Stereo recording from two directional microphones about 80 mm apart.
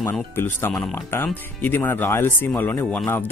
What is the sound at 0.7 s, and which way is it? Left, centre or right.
Speech, centre.